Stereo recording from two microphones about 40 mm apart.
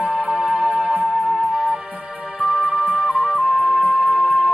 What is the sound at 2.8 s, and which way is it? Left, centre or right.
Music, right.